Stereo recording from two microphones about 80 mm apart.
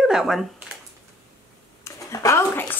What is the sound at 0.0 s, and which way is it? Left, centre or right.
Speech, centre.